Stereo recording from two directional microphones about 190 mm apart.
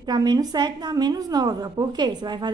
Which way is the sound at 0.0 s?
20° right (ahead or behind).